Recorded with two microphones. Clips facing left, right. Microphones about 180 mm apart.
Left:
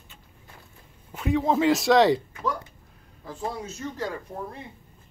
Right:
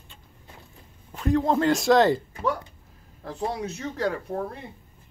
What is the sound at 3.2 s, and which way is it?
Speech, 70° right (ahead or behind).